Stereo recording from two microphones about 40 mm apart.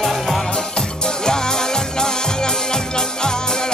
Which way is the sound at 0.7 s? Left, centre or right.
Centre.